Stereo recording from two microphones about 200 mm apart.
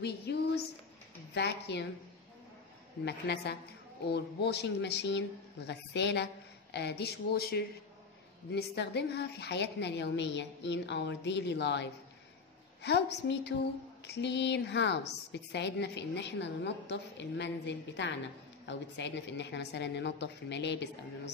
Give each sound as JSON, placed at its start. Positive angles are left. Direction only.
{"t": 0.3, "sound": "a woman's voice", "side_deg": 55}
{"t": 3.1, "sound": "a woman's voice", "side_deg": 55}